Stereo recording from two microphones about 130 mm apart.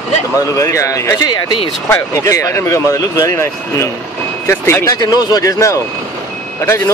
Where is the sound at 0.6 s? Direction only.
25° left (ahead or behind); by 1.7 s 40° left (ahead or behind).